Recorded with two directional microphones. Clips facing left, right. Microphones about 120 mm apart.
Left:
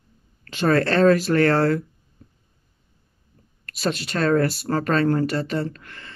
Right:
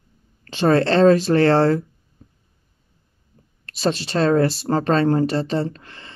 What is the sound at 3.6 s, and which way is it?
Speech, 30° right (ahead or behind).